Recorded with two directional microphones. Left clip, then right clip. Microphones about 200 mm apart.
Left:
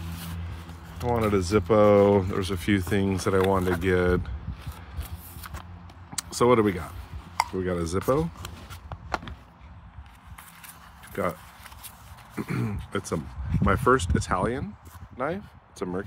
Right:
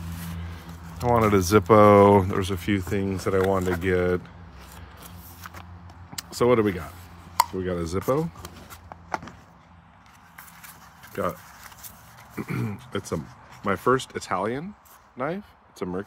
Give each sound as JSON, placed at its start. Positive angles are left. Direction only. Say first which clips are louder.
{"t": 1.0, "sound": "speech", "louder": "right 5 dB", "side_deg": -25}
{"t": 2.2, "sound": "speech", "louder": "right 2 dB", "side_deg": -5}
{"t": 2.9, "sound": "speech", "louder": "even", "side_deg": 25}
{"t": 6.1, "sound": "speech", "louder": "even", "side_deg": 10}
{"t": 8.8, "sound": "walk", "louder": "even", "side_deg": 20}
{"t": 12.4, "sound": "speech", "louder": "even", "side_deg": 10}